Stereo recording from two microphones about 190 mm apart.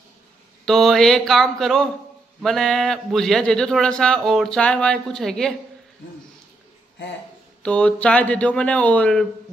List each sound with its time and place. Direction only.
0.7 s a man's voice: centre (ahead or behind)
7.6 s speech: 5° left (ahead or behind)